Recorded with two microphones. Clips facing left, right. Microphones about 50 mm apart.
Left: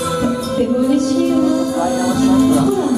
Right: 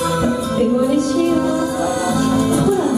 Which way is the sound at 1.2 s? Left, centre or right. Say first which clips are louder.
Left 2 dB; centre.